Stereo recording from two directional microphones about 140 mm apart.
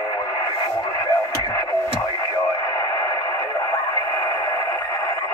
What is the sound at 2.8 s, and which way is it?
Radio, 25° left (ahead or behind).